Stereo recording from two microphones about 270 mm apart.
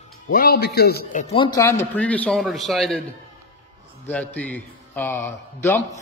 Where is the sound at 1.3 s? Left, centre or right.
Centre.